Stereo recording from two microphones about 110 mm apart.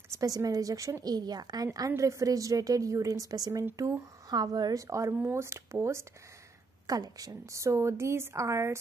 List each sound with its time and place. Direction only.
0.1 s a woman's voice: 30° right (ahead or behind)